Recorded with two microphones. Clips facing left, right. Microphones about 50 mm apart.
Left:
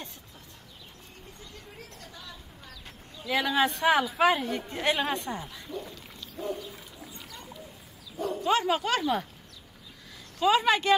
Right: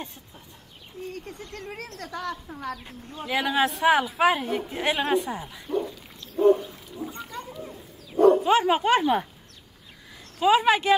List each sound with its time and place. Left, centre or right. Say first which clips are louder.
1.1 s speech: right 10 dB; right
2.7 s speech: right 10 dB; right
3.3 s a woman's voice: right 2 dB; centre
6.4 s a sound: right 16 dB; right
7.3 s bow-wow: right 8 dB; right
8.4 s speech: right 5 dB; right
10.4 s a woman's voice: right 3 dB; centre